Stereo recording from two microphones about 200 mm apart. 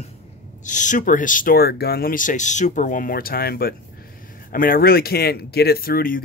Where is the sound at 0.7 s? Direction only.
40° left (ahead or behind).